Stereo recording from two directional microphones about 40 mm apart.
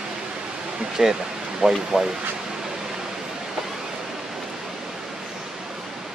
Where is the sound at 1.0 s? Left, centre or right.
Centre.